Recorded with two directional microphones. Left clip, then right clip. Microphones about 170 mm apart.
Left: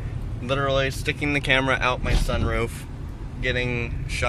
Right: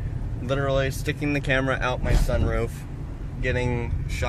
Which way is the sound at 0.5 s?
10° right (ahead or behind).